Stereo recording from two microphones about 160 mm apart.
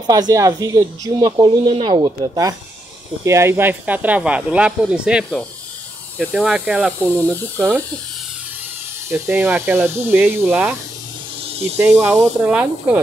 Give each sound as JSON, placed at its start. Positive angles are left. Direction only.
{"t": 0.0, "sound": "speech", "side_deg": -25}
{"t": 9.1, "sound": "speech", "side_deg": -10}
{"t": 11.8, "sound": "speech", "side_deg": -15}